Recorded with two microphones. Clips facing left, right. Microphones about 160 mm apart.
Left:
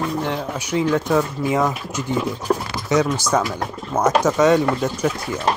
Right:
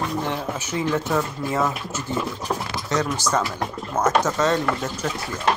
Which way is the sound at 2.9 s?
10° left (ahead or behind).